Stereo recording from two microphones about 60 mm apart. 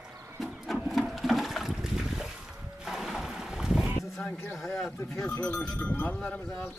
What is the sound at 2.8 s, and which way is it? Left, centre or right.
Boat, centre.